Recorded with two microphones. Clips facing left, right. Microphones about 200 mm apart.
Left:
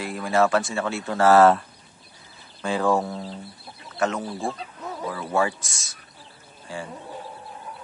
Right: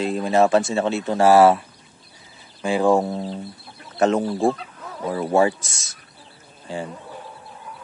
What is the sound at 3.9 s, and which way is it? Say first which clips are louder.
Speech: right 7 dB; 30° right (ahead or behind).